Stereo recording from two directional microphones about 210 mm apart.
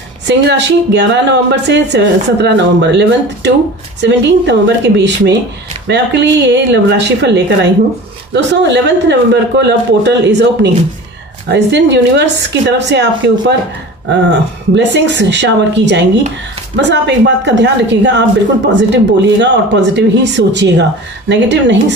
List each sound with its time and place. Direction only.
0.3 s speech: 55° right (ahead or behind)
19.4 s speech: 55° right (ahead or behind)